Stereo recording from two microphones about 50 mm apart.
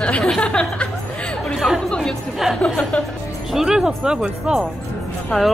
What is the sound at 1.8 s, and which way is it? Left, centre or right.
Music, centre.